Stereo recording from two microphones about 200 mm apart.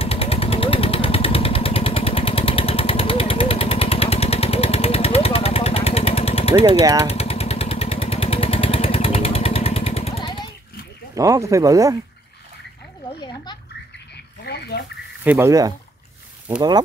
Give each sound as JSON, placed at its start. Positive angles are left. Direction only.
{"t": 0.0, "sound": "vehicle", "side_deg": 30}
{"t": 6.5, "sound": "speech", "side_deg": -20}
{"t": 7.1, "sound": "vehicle", "side_deg": 30}
{"t": 11.1, "sound": "speech", "side_deg": -15}
{"t": 13.2, "sound": "a child's voice", "side_deg": 20}
{"t": 14.4, "sound": "frog", "side_deg": 55}
{"t": 15.2, "sound": "speech", "side_deg": -15}